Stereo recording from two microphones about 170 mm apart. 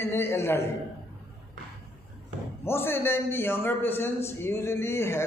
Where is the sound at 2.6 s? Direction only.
15° left (ahead or behind).